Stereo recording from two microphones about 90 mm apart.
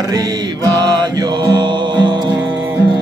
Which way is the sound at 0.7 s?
55° right (ahead or behind).